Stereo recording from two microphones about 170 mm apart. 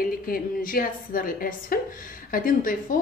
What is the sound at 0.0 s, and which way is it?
A woman's voice, 55° left (ahead or behind).